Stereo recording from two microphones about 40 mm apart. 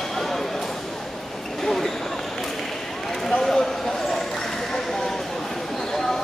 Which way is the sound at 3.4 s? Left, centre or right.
Centre.